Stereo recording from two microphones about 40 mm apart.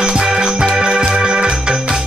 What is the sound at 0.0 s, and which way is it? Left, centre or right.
Music, centre.